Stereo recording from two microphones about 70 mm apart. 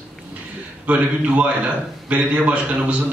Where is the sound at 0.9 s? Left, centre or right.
Centre.